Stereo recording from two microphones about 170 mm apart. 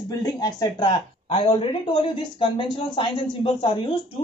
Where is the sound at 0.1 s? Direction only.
20° left (ahead or behind).